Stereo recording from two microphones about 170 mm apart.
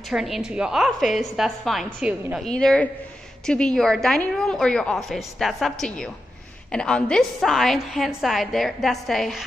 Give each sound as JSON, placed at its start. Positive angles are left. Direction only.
{"t": 0.1, "sound": "a woman's voice", "side_deg": -5}
{"t": 2.5, "sound": "a woman's voice", "side_deg": 5}